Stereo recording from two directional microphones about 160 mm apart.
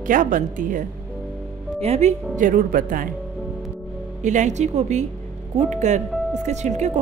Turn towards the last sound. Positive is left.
turn(degrees=-45)  # may be behind; listen again after turning